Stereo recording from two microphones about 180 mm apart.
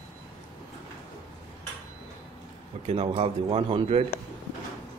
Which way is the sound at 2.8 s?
35° right (ahead or behind).